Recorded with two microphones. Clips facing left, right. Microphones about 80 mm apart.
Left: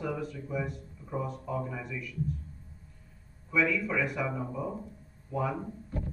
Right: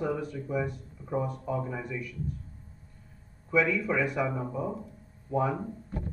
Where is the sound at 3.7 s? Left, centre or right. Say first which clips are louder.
Right 2 dB; right.